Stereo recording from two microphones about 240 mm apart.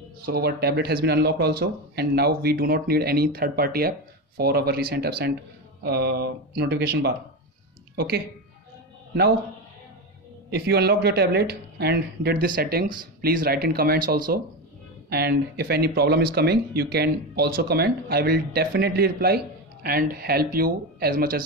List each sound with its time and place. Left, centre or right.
0.2 s speech: right
10.5 s speech: right